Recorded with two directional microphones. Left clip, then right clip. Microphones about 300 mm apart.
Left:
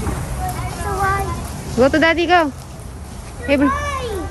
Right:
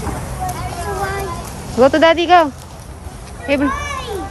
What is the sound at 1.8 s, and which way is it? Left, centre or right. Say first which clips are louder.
A child's voice: right 3 dB; centre.